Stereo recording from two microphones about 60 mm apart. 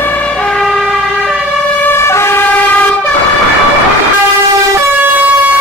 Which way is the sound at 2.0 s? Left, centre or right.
Left.